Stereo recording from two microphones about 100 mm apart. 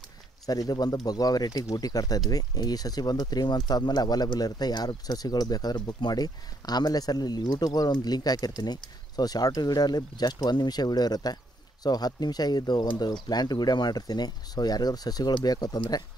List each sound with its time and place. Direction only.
0.5 s speech: 40° left (ahead or behind)